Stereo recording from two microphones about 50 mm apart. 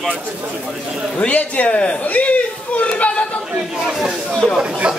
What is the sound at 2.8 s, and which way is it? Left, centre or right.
Chatter, left.